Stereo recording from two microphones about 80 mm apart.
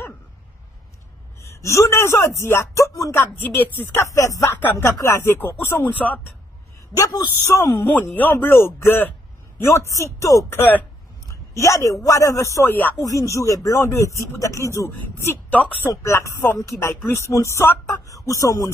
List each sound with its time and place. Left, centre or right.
1.4 s speech: left
4.0 s speech: left
4.6 s speech: left
5.9 s speech: centre
7.0 s a man's voice: left
7.5 s speech: left
9.6 s speech: left
10.6 s speech: left
11.5 s speech: left
14.9 s speech: left
16.0 s speech: left